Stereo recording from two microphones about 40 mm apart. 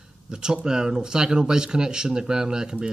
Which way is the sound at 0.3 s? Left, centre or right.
Centre.